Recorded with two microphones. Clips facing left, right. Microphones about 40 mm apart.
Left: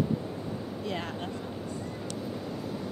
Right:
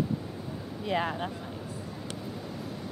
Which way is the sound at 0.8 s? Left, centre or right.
Centre.